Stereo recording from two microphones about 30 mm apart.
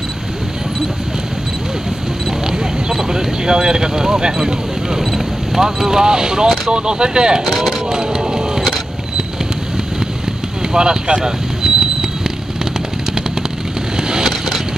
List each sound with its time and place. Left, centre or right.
2.4 s a sound: centre
5.5 s speech: centre
6.7 s speech: right
7.4 s speech: centre
7.9 s vehicle: right
10.6 s a sound: right
13.9 s vehicle: right